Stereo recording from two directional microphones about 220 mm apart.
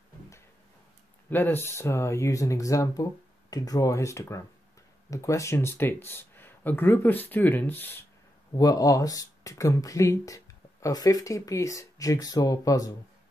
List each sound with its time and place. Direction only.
1.3 s speech: 10° left (ahead or behind)